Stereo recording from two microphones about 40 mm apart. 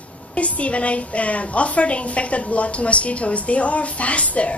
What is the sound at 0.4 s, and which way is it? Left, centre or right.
A woman's voice, left.